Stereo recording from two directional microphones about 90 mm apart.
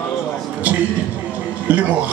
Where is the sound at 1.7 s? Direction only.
15° right (ahead or behind).